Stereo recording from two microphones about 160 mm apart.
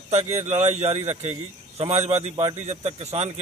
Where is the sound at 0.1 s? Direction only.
40° right (ahead or behind).